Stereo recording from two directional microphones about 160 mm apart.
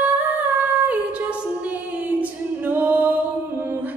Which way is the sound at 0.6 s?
10° right (ahead or behind).